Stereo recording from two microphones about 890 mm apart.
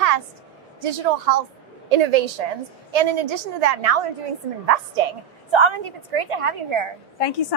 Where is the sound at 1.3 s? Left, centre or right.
Right.